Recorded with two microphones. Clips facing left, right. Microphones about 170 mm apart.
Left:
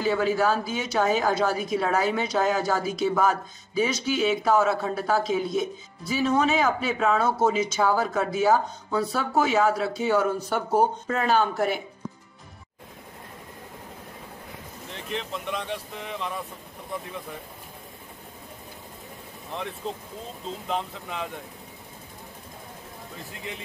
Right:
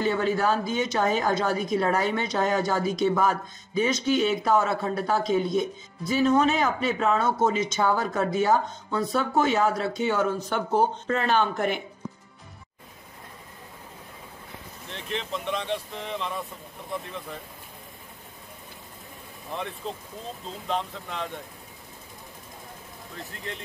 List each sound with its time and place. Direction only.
0.0 s a woman's voice: 5° left (ahead or behind)
15.0 s a woman's voice: 5° left (ahead or behind)
20.6 s a woman's voice: 5° left (ahead or behind)